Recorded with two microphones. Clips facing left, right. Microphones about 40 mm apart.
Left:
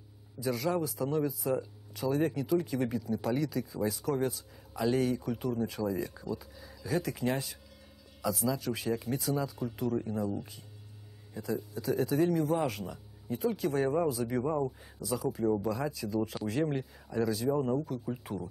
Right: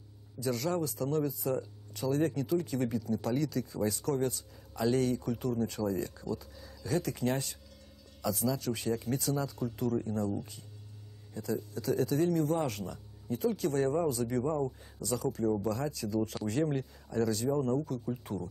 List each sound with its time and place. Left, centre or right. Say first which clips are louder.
0.4 s speech: left 1 dB; centre